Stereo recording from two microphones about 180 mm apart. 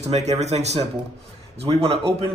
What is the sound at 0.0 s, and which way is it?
Speech, 40° right (ahead or behind).